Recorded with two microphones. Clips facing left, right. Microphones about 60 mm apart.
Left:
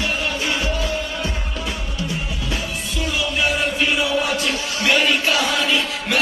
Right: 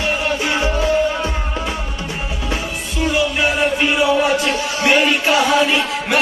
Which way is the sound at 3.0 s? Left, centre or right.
Right.